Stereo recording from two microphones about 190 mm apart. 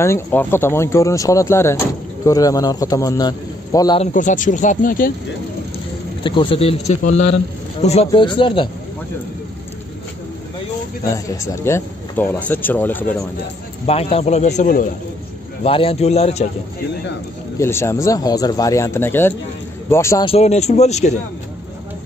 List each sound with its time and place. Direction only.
0.0 s a man's voice: 10° left (ahead or behind)
4.0 s speech: 40° left (ahead or behind)
6.2 s a man's voice: 25° left (ahead or behind)
11.1 s speech: 15° left (ahead or behind)
13.8 s speech: 30° left (ahead or behind)
15.6 s speech: 30° left (ahead or behind)
17.6 s speech: 15° left (ahead or behind)
20.2 s speech: 35° left (ahead or behind)